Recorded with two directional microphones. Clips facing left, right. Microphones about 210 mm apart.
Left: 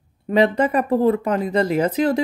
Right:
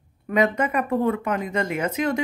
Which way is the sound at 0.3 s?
30° left (ahead or behind).